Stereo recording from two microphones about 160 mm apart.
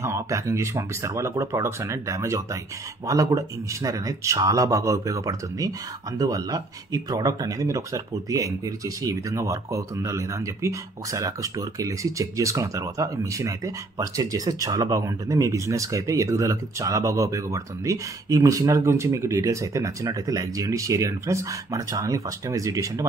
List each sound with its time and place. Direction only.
0.0 s speech: 20° right (ahead or behind)